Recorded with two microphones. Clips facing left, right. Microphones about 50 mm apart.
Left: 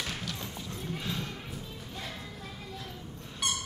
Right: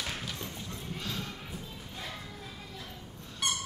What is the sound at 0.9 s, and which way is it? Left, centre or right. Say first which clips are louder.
Clip-clop: left 2 dB; centre.